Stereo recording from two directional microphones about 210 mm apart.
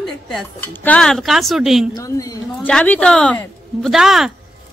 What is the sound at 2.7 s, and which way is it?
Speech, 5° left (ahead or behind).